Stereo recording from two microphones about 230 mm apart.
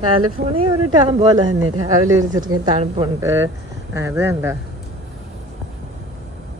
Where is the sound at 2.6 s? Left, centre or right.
Centre.